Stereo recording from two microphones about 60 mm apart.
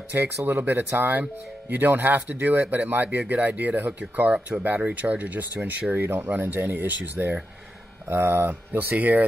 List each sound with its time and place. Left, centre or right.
0.1 s speech: right
8.9 s speech: right